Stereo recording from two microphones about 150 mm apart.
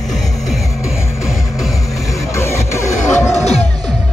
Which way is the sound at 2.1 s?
20° left (ahead or behind).